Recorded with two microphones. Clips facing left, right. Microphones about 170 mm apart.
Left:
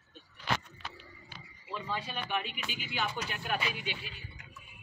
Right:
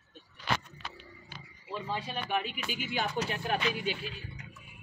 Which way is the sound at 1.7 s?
35° right (ahead or behind).